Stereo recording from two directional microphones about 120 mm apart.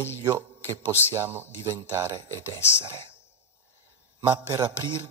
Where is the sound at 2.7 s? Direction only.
40° right (ahead or behind).